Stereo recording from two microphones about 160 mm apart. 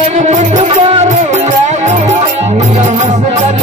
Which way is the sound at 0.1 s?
45° right (ahead or behind).